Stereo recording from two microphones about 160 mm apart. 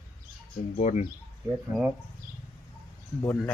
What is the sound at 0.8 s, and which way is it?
Speech, 50° left (ahead or behind).